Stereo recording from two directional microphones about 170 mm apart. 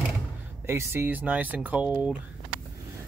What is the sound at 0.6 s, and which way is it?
Speech, 15° right (ahead or behind).